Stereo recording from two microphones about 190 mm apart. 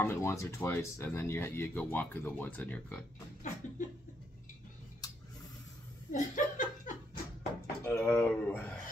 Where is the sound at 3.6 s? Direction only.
40° left (ahead or behind).